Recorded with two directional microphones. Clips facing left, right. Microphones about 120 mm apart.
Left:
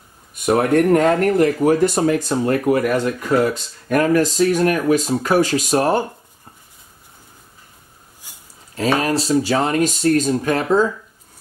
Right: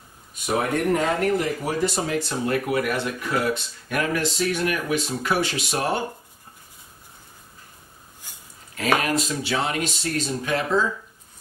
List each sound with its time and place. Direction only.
0.3 s speech: 60° left (ahead or behind); by 6.0 s 40° left (ahead or behind)
8.7 s speech: 30° left (ahead or behind); by 10.9 s 45° left (ahead or behind)